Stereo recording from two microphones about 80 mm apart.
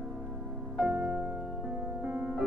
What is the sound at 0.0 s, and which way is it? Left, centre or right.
Music, centre.